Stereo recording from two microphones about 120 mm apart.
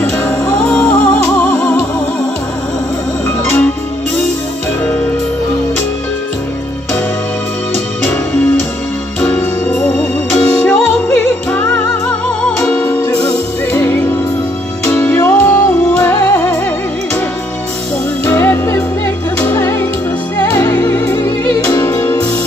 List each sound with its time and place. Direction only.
0.2 s music: 10° left (ahead or behind)
3.3 s music: 20° left (ahead or behind)
10.3 s music: 5° left (ahead or behind)
18.2 s music: 20° left (ahead or behind)